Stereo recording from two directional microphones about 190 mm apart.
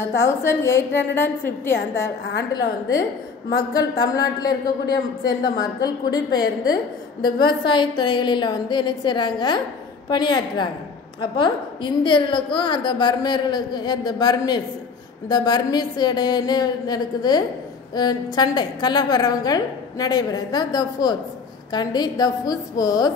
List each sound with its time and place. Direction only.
0.0 s a woman's voice: 15° left (ahead or behind)
3.7 s a woman's voice: 20° left (ahead or behind)